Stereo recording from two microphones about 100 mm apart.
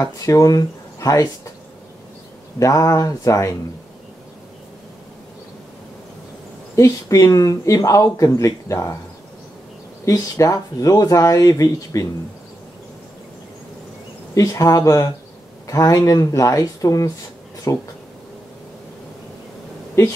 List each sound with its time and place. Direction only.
0.0 s speech: 35° left (ahead or behind)
2.6 s speech: 35° left (ahead or behind)
6.7 s speech: 35° left (ahead or behind)
10.0 s speech: 35° left (ahead or behind)
14.3 s speech: 35° left (ahead or behind)